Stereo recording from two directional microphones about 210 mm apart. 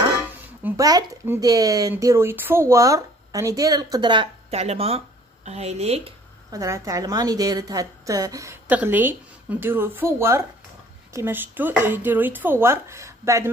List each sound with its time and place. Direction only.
0.7 s speech: 15° right (ahead or behind)
6.5 s speech: 15° right (ahead or behind)